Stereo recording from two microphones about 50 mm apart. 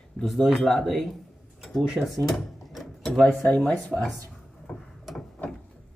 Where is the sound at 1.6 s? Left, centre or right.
Centre.